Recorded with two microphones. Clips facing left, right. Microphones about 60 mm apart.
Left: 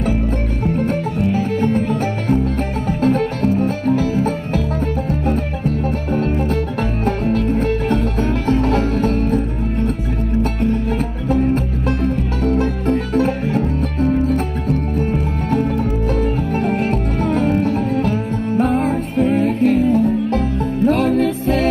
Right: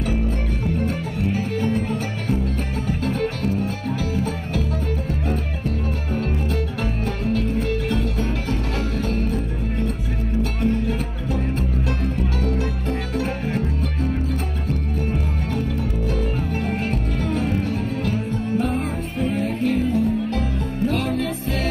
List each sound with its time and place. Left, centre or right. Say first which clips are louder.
0.7 s music: left 6 dB; left